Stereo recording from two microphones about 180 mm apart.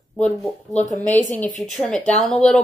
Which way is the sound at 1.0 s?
10° left (ahead or behind).